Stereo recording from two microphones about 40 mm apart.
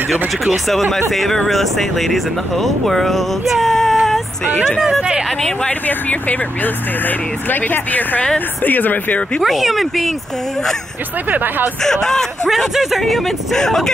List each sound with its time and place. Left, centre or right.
0.7 s speech: centre
5.7 s speech: left
9.4 s speech: centre
11.2 s speech: right
11.8 s speech: centre
12.5 s speech: centre
13.0 s speech: centre